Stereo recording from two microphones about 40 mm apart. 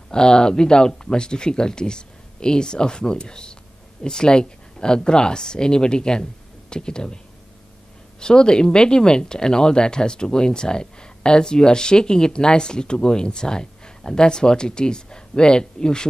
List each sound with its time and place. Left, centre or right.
0.1 s speech: centre
8.2 s speech: centre